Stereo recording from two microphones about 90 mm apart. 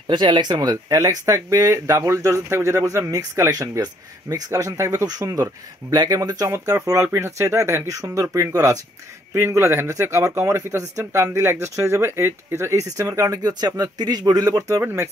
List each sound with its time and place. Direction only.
0.1 s speech: 55° right (ahead or behind); by 15.0 s 35° right (ahead or behind)